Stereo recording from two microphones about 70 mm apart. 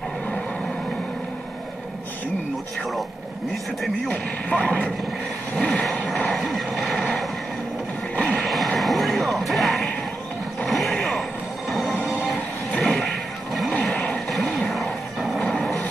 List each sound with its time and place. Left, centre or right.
4.1 s speech: centre
5.6 s vehicle: centre
6.3 s dog: centre
8.2 s a sound: centre
8.7 s a sound: centre
10.6 s mechanisms: centre
11.7 s music: centre
13.8 s a sound: centre
14.7 s music: centre
15.5 s vehicle: centre